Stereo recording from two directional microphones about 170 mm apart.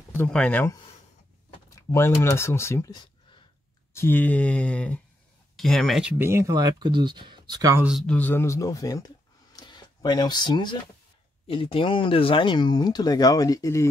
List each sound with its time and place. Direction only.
0.1 s speech: 10° left (ahead or behind); by 3.4 s 25° left (ahead or behind)
3.9 s speech: 15° left (ahead or behind); by 7.8 s 20° right (ahead or behind)
8.1 s speech: 10° left (ahead or behind)